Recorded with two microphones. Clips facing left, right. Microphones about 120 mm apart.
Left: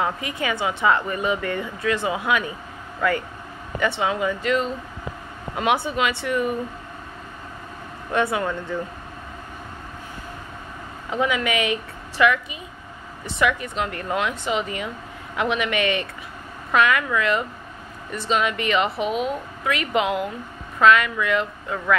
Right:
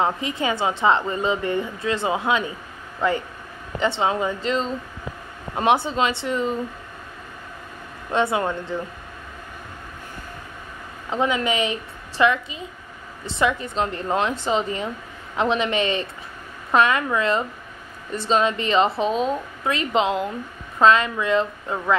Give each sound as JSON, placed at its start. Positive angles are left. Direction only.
{"t": 0.0, "sound": "a woman's voice", "side_deg": -25}
{"t": 8.1, "sound": "a woman's voice", "side_deg": -25}
{"t": 11.1, "sound": "a woman's voice", "side_deg": -30}